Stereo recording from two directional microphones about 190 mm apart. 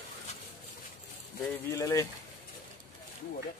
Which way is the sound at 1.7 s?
15° left (ahead or behind).